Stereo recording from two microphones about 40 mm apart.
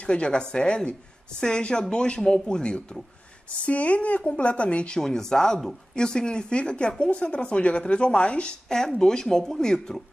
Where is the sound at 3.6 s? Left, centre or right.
Left.